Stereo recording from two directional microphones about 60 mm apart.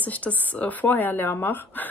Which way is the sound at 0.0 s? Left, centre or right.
Left.